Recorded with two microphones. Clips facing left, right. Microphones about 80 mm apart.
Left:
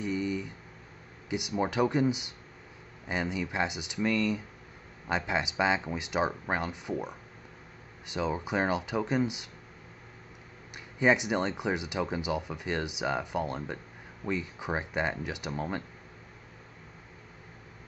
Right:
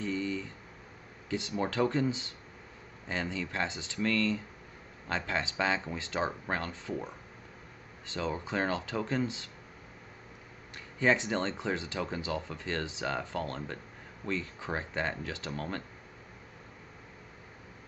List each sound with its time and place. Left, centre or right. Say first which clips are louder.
0.0 s a sound: left 2 dB; centre
1.3 s speech: left 2 dB; centre
11.0 s speech: left 2 dB; centre